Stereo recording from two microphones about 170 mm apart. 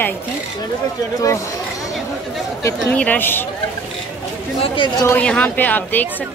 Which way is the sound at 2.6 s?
10° left (ahead or behind).